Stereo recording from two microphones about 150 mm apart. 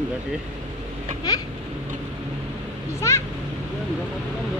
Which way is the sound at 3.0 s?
20° left (ahead or behind).